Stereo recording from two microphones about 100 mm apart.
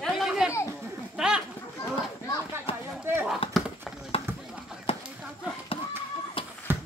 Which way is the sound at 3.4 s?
65° left (ahead or behind).